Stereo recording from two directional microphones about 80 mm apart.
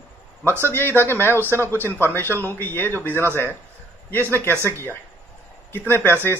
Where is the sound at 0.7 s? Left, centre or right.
Left.